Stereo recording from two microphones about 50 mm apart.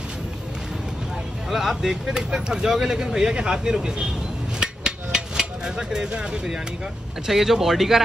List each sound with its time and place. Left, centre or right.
1.5 s speech: centre
4.6 s hammer: centre
7.2 s speech: centre